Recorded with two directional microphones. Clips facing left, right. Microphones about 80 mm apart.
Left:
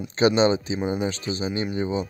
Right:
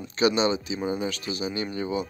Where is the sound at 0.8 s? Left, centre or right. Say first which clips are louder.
Left 3 dB; left.